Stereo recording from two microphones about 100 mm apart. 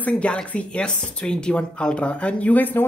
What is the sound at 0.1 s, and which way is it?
Speech, 10° left (ahead or behind).